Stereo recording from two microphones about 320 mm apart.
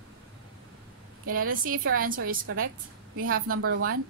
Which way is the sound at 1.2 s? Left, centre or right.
Right.